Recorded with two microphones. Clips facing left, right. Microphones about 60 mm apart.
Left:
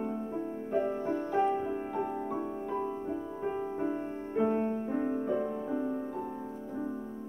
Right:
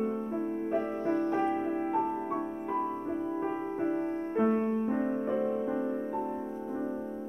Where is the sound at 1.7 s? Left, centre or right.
Right.